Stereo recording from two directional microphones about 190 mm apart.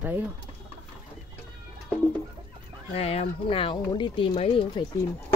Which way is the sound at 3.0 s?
30° left (ahead or behind).